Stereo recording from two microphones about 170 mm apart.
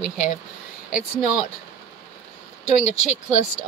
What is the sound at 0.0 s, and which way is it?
Speech, 45° left (ahead or behind).